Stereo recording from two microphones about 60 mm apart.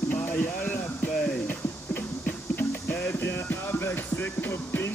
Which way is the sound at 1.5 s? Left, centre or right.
Left.